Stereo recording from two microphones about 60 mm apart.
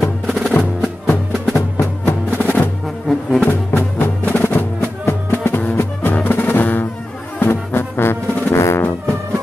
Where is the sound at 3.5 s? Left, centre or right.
Left.